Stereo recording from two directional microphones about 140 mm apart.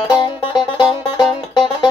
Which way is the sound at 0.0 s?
35° left (ahead or behind).